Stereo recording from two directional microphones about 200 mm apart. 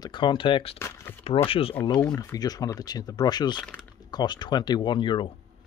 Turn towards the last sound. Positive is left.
turn(degrees=25)  # may be behind; listen again after turning